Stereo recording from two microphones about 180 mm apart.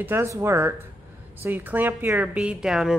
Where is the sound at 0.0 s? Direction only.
15° right (ahead or behind).